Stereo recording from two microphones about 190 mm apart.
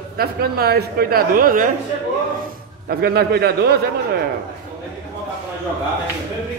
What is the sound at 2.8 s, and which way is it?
Speech, 55° right (ahead or behind).